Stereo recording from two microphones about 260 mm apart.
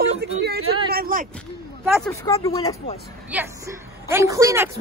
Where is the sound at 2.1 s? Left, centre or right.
Centre.